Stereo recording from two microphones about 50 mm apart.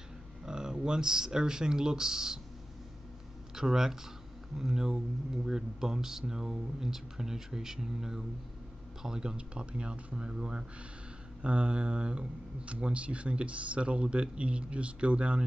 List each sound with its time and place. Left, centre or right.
0.5 s speech: centre
3.5 s speech: centre